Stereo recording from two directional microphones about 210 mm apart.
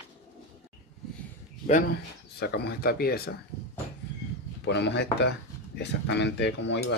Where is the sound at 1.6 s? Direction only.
35° left (ahead or behind).